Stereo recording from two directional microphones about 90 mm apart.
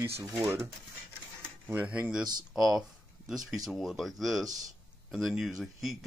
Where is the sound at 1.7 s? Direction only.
15° right (ahead or behind).